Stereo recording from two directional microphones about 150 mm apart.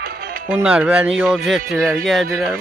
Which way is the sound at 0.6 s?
5° right (ahead or behind).